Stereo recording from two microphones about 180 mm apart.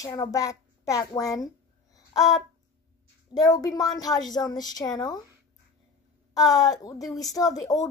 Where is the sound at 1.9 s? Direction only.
20° left (ahead or behind).